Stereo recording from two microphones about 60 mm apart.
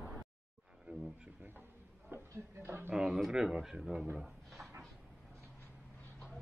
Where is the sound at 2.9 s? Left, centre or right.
Centre.